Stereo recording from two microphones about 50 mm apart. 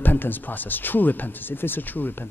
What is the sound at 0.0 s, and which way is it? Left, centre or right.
Speech, left.